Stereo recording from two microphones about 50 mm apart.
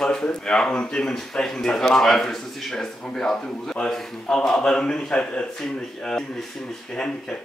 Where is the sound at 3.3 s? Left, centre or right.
Left.